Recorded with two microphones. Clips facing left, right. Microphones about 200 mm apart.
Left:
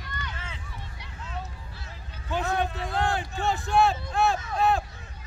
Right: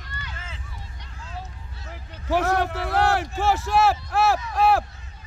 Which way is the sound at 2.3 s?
80° right.